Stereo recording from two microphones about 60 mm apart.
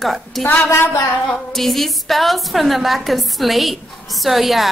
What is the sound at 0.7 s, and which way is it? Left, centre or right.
Speech, left.